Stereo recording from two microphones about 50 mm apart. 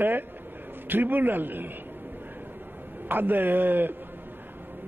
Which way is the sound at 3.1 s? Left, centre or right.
Right.